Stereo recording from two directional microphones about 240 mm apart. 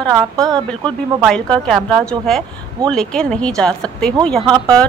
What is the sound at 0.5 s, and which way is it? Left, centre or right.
A woman's voice, centre.